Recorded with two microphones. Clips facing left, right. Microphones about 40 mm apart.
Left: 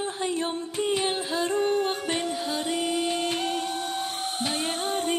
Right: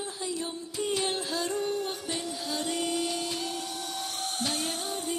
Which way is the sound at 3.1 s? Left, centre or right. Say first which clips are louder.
Left 6 dB; left.